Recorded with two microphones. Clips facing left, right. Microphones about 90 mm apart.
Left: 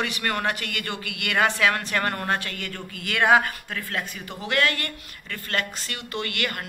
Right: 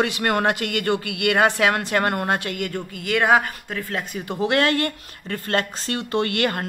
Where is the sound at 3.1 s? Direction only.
5° right (ahead or behind); by 6.7 s 30° right (ahead or behind).